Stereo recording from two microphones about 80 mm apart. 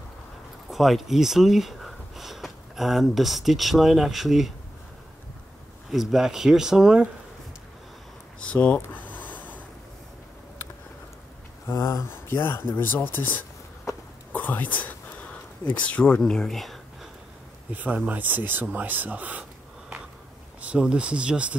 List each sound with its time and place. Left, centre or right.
0.7 s speech: centre
5.9 s speech: centre
8.5 s speech: centre
8.9 s a sound: left
11.9 s speech: left
14.3 s a sound: left; by 17.1 s centre
17.6 s speech: centre
20.6 s speech: centre